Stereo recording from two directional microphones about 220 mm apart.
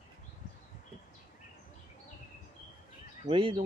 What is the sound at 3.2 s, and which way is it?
Speech, 25° right (ahead or behind).